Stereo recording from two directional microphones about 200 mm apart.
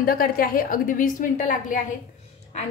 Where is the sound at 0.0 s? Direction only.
45° left (ahead or behind).